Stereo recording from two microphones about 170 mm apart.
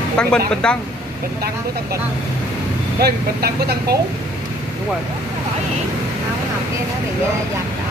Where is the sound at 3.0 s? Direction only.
70° right (ahead or behind).